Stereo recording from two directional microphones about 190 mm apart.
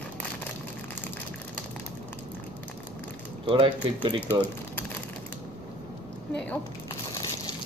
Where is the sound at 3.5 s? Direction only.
25° right (ahead or behind).